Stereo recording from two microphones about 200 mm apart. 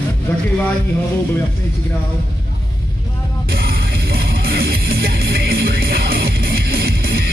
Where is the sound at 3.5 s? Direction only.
50° right (ahead or behind).